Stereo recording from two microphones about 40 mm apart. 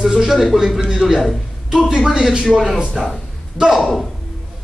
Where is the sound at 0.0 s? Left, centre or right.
Centre.